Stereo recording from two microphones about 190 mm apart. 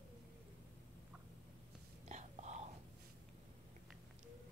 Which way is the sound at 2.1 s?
35° right (ahead or behind).